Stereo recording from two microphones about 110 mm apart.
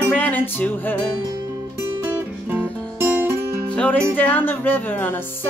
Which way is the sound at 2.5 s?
20° right (ahead or behind).